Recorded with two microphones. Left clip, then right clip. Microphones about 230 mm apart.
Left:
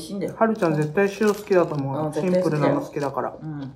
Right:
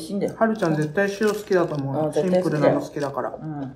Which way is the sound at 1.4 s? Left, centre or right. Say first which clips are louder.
Left 1 dB; left.